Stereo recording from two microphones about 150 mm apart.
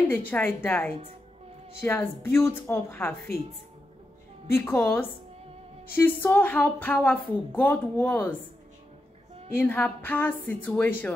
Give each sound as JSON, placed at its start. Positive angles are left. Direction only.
{"t": 0.1, "sound": "a woman's voice", "side_deg": 10}
{"t": 4.5, "sound": "a woman's voice", "side_deg": 15}
{"t": 9.6, "sound": "a woman's voice", "side_deg": 10}